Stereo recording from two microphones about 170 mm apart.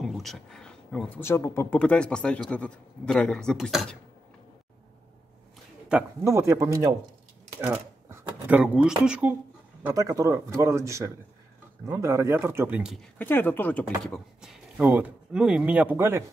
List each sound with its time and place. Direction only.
0.0 s speech: centre (ahead or behind)
5.9 s speech: 5° right (ahead or behind)
6.2 s speech: 15° right (ahead or behind)
9.8 s speech: 20° right (ahead or behind)
13.2 s speech: 10° left (ahead or behind); by 16.3 s 15° right (ahead or behind)